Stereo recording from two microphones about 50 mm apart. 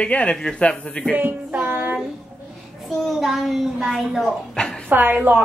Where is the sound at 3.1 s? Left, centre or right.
Centre.